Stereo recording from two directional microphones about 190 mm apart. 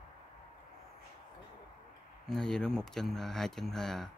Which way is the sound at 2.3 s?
5° left (ahead or behind).